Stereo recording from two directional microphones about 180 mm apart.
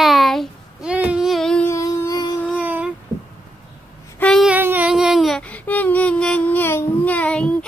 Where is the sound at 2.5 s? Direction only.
10° right (ahead or behind).